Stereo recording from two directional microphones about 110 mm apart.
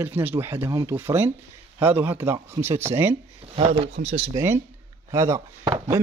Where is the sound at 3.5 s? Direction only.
60° right (ahead or behind).